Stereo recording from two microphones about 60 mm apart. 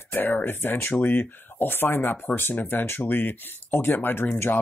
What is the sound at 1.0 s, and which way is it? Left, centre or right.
Speech, left.